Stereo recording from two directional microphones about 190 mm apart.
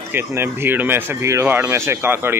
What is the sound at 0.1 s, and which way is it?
Speech, 10° right (ahead or behind).